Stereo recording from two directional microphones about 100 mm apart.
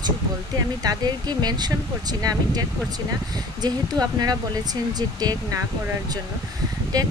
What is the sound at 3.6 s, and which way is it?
Speech, 40° right (ahead or behind).